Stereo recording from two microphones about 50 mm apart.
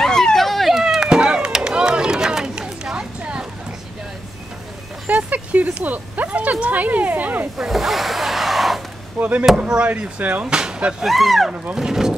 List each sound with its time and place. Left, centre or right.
0.0 s chop: centre
5.0 s a sound: right
7.5 s a sound: centre
9.2 s speech: right
10.4 s music: centre
10.8 s speech: centre
11.1 s speech: centre
11.7 s speech: centre